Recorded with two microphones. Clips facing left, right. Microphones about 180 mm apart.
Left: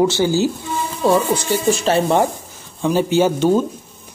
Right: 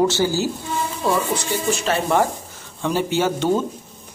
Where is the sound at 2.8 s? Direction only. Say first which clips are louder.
Left 4 dB; 15° left (ahead or behind).